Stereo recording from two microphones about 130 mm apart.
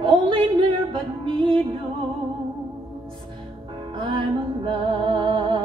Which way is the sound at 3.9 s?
40° right (ahead or behind).